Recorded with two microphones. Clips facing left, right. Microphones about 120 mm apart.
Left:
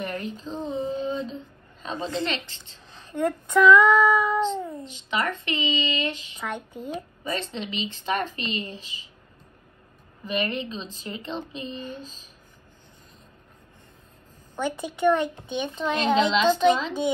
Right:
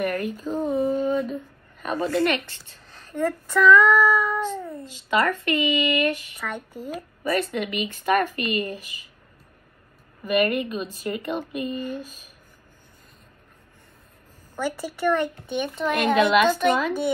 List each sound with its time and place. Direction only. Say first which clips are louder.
0.0 s a sound: right 6 dB; 25° left (ahead or behind)
2.0 s a woman's voice: right 6 dB; 20° left (ahead or behind)
10.2 s a woman's voice: right 6 dB; 25° left (ahead or behind)
12.0 s speech: right 3 dB; 15° right (ahead or behind)
14.5 s a woman's voice: right 1 dB; 20° left (ahead or behind)